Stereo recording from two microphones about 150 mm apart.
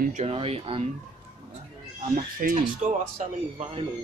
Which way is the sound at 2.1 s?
60° right (ahead or behind).